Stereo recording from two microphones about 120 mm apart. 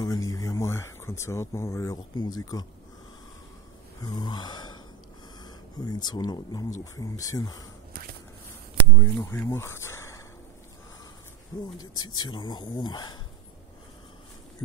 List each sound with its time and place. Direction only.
0.0 s a sound: 30° left (ahead or behind)
2.1 s speech: 35° left (ahead or behind)
4.0 s grunt: 35° left (ahead or behind)
5.4 s speech: 35° left (ahead or behind)
8.9 s speech: 25° left (ahead or behind)
11.8 s speech: 35° left (ahead or behind)